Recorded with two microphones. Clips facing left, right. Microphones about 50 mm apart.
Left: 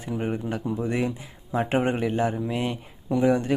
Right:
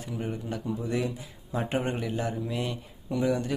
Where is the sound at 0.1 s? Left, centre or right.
Left.